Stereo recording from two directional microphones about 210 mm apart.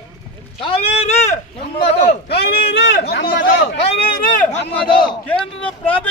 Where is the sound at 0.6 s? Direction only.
25° left (ahead or behind).